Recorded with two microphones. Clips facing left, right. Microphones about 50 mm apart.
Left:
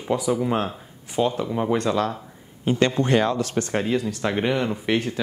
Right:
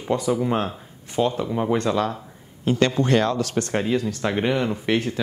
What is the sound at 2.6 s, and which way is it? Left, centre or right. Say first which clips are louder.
Speech: even; centre.